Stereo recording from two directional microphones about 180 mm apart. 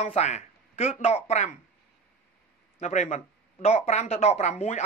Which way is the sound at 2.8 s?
40° left (ahead or behind).